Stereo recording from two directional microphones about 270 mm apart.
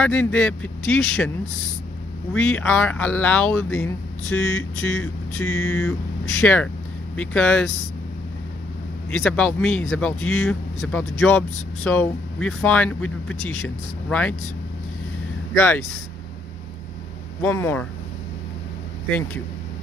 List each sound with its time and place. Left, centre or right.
0.0 s speech: centre
2.3 s speech: centre
4.4 s a sound: left
5.0 s vehicle: centre
6.4 s speech: centre
9.1 s speech: centre
17.4 s vehicle: centre
19.0 s vehicle: centre